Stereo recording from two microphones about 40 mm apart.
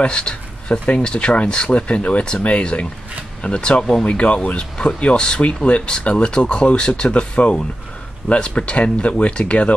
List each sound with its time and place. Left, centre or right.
0.0 s speech: left